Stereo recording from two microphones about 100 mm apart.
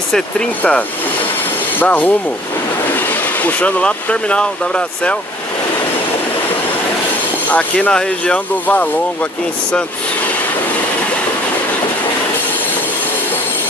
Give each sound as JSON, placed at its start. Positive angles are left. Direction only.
{"t": 0.6, "sound": "speech", "side_deg": 10}
{"t": 3.4, "sound": "speech", "side_deg": 15}
{"t": 7.5, "sound": "speech", "side_deg": 10}